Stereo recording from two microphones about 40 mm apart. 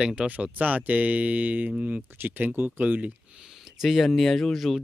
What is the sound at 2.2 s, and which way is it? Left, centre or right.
Speech, right.